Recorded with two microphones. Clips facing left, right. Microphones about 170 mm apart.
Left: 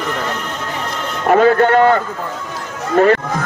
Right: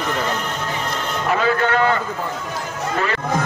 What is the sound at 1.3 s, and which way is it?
Speech, 50° left (ahead or behind).